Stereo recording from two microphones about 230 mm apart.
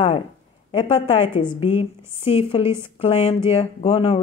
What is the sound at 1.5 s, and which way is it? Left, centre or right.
Speech, left.